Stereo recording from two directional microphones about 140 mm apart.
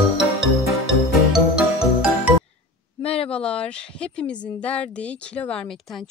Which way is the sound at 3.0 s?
45° left (ahead or behind).